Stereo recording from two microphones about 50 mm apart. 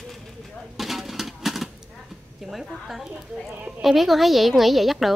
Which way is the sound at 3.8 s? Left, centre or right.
Centre.